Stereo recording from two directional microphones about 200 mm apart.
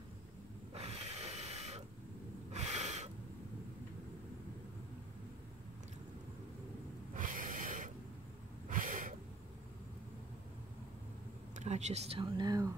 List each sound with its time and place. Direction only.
0.7 s a sound: 30° right (ahead or behind)
2.5 s snort: 35° right (ahead or behind)
7.2 s snort: 40° right (ahead or behind)
11.5 s speech: 35° right (ahead or behind); by 12.7 s 20° right (ahead or behind)